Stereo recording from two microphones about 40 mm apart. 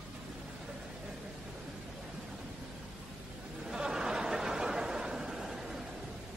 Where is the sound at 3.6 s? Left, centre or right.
Centre.